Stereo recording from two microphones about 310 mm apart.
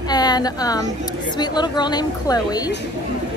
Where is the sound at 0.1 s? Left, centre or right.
Centre.